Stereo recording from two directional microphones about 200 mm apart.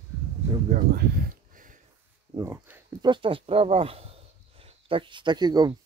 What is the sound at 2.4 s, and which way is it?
Speech, 10° right (ahead or behind).